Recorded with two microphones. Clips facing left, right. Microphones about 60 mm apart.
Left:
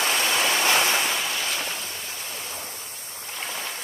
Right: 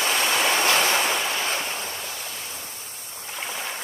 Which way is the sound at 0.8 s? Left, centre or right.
Centre.